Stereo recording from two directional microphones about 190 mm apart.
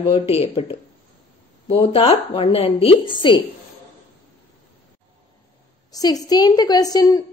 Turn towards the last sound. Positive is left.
turn(degrees=20)  # may be behind; listen again after turning